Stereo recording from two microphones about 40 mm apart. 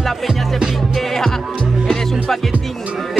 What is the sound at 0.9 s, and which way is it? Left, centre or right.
Music, centre.